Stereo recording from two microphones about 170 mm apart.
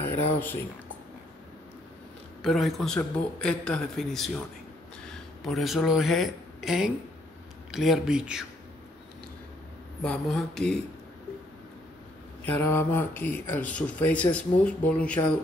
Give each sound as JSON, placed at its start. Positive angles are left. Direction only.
{"t": 0.0, "sound": "a sound", "side_deg": 10}
{"t": 2.4, "sound": "a man's voice", "side_deg": 0}
{"t": 10.0, "sound": "a man's voice", "side_deg": 0}
{"t": 12.5, "sound": "speech", "side_deg": 10}